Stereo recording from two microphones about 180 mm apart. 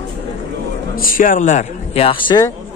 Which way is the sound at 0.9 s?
50° left (ahead or behind).